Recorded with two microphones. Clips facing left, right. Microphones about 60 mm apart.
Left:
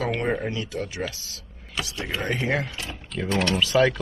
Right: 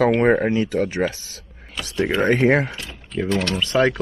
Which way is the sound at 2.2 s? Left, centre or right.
Right.